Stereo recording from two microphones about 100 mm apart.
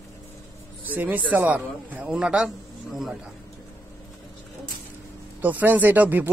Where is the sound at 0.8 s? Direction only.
15° right (ahead or behind).